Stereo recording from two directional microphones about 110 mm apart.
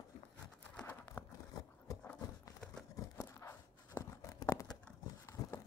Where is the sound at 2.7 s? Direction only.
30° left (ahead or behind).